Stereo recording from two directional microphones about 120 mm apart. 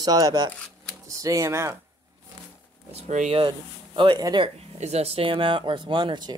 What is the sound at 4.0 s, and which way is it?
Speech, 40° right (ahead or behind).